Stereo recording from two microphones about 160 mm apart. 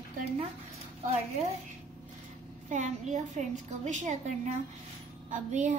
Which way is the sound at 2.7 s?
50° right (ahead or behind).